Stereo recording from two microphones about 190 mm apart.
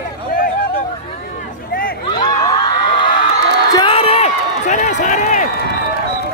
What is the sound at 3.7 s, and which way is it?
Run, 30° left (ahead or behind).